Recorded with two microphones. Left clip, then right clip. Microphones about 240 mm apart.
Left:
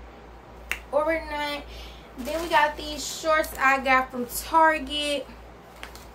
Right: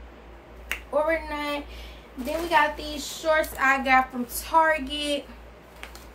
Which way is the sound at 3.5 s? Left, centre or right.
Centre.